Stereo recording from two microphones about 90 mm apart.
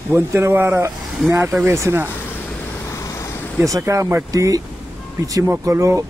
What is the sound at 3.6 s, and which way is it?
Speech, 40° right (ahead or behind).